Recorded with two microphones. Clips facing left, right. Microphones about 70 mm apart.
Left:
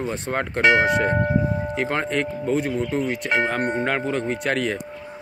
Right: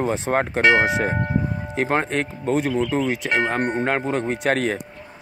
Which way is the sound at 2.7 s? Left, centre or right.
Right.